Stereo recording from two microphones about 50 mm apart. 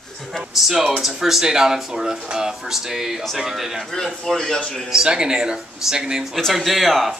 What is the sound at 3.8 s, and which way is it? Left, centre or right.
Speech, centre.